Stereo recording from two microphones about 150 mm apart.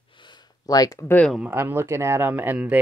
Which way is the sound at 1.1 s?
5° left (ahead or behind).